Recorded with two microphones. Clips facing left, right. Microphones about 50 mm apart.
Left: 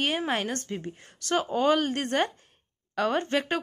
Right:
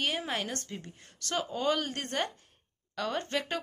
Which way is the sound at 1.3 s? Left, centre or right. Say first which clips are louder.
Left 6 dB; left.